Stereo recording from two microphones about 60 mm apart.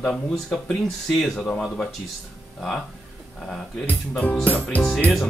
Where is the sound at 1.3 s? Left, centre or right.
Centre.